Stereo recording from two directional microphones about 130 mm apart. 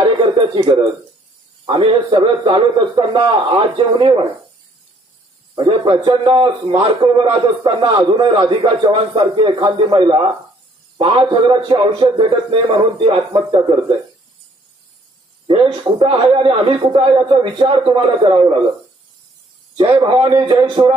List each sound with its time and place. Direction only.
0.2 s a sound: 45° right (ahead or behind)
1.7 s a man's voice: 40° right (ahead or behind)
5.5 s a man's voice: 40° right (ahead or behind)
7.6 s a man's voice: 35° right (ahead or behind)
15.4 s a man's voice: 40° right (ahead or behind)
20.0 s a man's voice: 35° right (ahead or behind)